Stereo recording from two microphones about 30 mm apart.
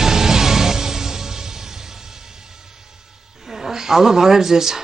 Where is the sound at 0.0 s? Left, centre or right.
Centre.